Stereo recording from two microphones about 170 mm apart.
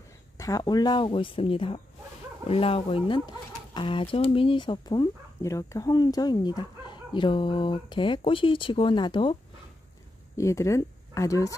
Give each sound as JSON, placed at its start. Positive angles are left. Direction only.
{"t": 0.4, "sound": "speech", "side_deg": 20}
{"t": 10.3, "sound": "speech", "side_deg": 20}